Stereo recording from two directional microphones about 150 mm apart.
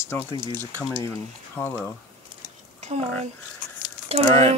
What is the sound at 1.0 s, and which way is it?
Speech, 15° left (ahead or behind).